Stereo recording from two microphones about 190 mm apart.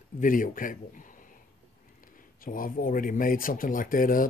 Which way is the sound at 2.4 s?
45° left (ahead or behind).